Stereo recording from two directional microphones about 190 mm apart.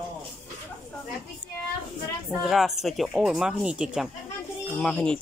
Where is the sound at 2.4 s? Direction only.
Centre (ahead or behind).